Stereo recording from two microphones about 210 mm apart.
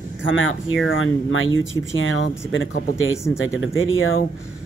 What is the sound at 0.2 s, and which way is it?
Speech, 65° left (ahead or behind).